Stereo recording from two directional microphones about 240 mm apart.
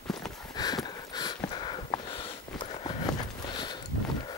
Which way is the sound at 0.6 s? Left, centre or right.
Centre.